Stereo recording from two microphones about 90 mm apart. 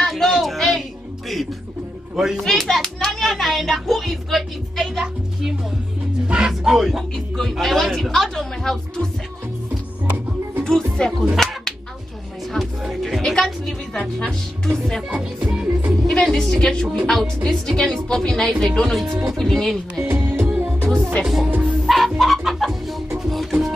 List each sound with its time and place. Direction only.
0.0 s a sound: 5° left (ahead or behind)
2.1 s speech: 5° right (ahead or behind)
6.2 s speech: 10° right (ahead or behind)
10.6 s music: 5° left (ahead or behind)
11.3 s a sound: 5° left (ahead or behind)
12.5 s music: centre (ahead or behind)
13.2 s a woman's voice: 5° left (ahead or behind)
15.4 s music: 10° right (ahead or behind)
16.1 s speech: 5° left (ahead or behind)
20.0 s music: 25° right (ahead or behind)
21.2 s speech: 5° right (ahead or behind)
21.5 s music: 20° right (ahead or behind)
21.8 s chicken: centre (ahead or behind)
23.3 s music: centre (ahead or behind)